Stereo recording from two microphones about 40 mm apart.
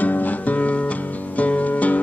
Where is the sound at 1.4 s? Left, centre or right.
Left.